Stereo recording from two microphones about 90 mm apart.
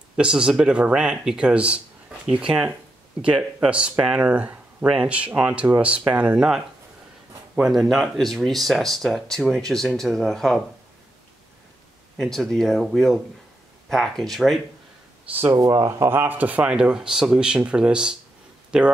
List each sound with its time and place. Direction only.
0.1 s speech: 10° right (ahead or behind)
7.9 s speech: centre (ahead or behind)
12.2 s speech: 5° left (ahead or behind)
15.5 s speech: 40° right (ahead or behind)
16.1 s speech: 20° right (ahead or behind)